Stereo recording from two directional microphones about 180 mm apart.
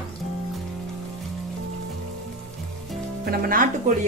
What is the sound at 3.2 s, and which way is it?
Music, 55° right (ahead or behind).